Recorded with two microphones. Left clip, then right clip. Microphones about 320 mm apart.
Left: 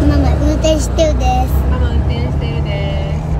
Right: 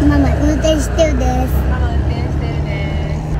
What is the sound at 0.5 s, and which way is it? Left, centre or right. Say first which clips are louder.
Child singing: even; right.